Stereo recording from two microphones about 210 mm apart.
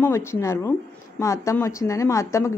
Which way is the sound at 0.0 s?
10° left (ahead or behind).